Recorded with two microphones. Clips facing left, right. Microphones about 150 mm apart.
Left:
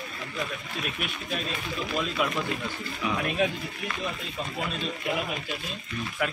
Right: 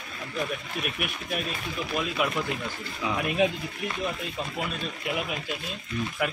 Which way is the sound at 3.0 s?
20° right (ahead or behind).